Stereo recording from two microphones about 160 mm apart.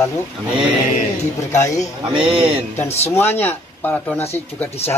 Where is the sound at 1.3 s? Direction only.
20° left (ahead or behind).